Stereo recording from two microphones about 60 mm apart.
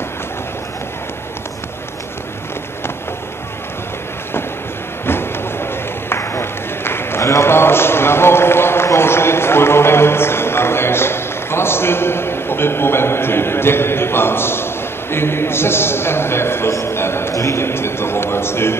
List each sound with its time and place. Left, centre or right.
5.0 s a man's voice: left